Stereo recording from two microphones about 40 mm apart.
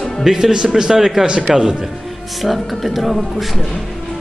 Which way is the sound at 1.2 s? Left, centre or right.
Right.